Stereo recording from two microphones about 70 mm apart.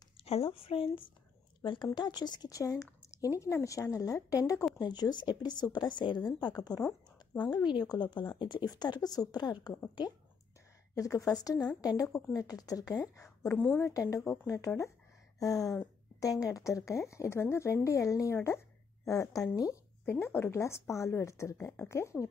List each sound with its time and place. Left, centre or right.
2.0 s speech: left
2.5 s speech: left
4.7 s a woman's voice: left
7.5 s a woman's voice: left
11.0 s speech: left
13.8 s speech: left
15.3 s a sound: left
16.2 s speech: left
20.1 s a woman's voice: left